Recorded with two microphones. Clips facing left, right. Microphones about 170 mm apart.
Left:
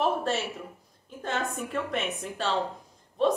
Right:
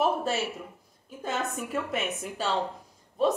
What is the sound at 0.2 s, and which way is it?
A woman's voice, centre (ahead or behind).